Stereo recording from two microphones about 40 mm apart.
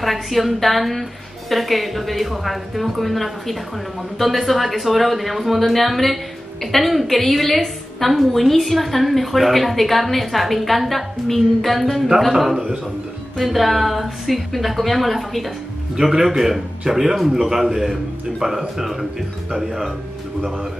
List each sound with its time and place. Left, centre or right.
0.0 s a woman's voice: centre
18.4 s speech: centre
18.8 s a man's voice: centre